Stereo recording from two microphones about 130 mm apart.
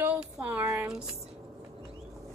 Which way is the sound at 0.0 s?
10° right (ahead or behind).